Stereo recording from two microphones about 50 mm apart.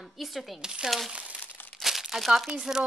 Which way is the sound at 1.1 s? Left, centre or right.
Right.